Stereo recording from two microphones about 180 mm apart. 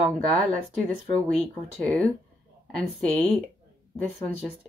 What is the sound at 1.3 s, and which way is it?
Speech, 5° left (ahead or behind).